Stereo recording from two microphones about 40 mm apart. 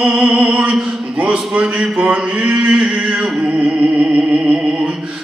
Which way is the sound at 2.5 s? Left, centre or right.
Right.